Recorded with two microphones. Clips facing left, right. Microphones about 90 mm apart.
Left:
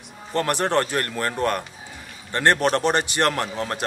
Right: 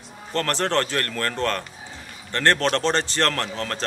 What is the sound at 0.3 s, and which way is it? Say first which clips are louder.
A man's voice: left 2 dB; 15° left (ahead or behind).